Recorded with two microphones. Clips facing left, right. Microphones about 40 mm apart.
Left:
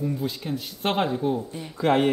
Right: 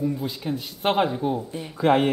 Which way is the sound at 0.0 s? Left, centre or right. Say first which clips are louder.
Right 2 dB; centre.